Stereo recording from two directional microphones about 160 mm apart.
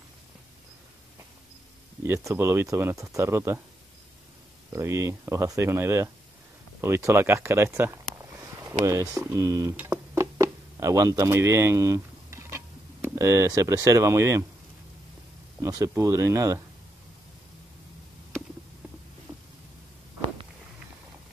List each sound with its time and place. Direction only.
2.0 s speech: 15° right (ahead or behind)
4.7 s speech: 15° right (ahead or behind)
15.6 s speech: 20° right (ahead or behind)
19.3 s cat: 10° right (ahead or behind)